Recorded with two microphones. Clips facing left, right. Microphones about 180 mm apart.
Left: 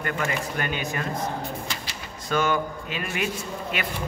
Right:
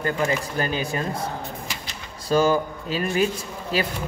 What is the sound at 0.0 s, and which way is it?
Speech, 30° right (ahead or behind).